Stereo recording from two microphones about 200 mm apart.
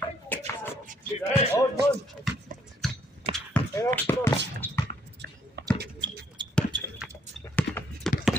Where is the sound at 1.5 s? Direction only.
10° left (ahead or behind).